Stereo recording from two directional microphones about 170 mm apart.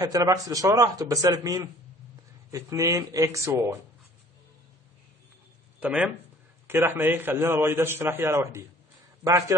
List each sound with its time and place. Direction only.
0.0 s a man's voice: 20° right (ahead or behind)
5.8 s a man's voice: 5° right (ahead or behind)